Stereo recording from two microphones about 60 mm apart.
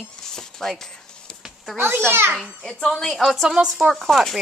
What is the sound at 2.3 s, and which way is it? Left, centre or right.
Speech, centre.